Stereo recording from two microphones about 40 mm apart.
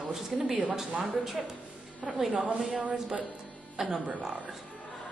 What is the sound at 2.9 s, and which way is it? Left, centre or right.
Speech, right.